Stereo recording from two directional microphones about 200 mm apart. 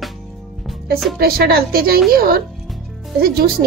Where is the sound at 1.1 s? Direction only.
50° right (ahead or behind).